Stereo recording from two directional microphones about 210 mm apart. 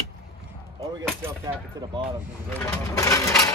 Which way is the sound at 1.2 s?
20° right (ahead or behind).